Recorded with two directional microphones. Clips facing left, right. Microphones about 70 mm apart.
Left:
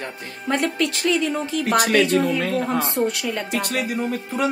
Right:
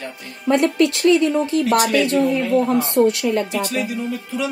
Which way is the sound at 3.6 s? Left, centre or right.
Left.